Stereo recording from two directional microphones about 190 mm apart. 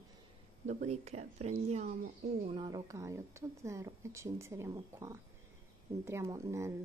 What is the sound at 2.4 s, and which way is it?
A woman's voice, 25° right (ahead or behind).